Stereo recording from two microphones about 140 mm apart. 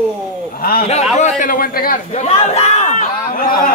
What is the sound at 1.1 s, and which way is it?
Speech, 60° left (ahead or behind).